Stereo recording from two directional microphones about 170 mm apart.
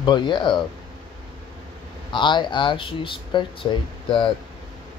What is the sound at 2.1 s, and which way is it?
Speech, 25° left (ahead or behind).